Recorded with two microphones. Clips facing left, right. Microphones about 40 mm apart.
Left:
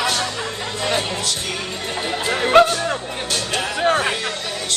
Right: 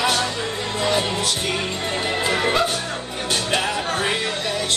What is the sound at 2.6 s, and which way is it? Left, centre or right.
Music, left.